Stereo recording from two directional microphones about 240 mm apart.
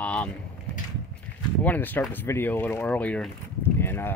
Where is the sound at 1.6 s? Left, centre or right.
Centre.